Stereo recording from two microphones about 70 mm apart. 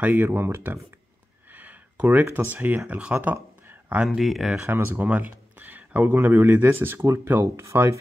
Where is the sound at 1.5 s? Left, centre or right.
Right.